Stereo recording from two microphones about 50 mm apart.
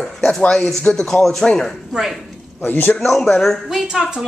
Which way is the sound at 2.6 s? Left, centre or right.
Left.